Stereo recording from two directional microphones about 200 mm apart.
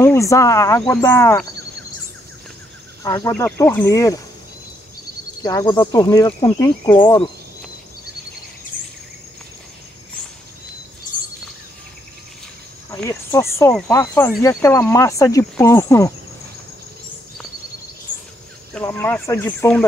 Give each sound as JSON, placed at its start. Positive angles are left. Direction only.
{"t": 0.0, "sound": "speech", "side_deg": 15}
{"t": 3.0, "sound": "speech", "side_deg": 15}
{"t": 5.4, "sound": "speech", "side_deg": 20}
{"t": 12.9, "sound": "speech", "side_deg": 15}
{"t": 18.8, "sound": "speech", "side_deg": 10}